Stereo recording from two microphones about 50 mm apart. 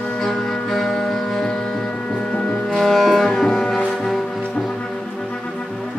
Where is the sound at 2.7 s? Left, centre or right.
Centre.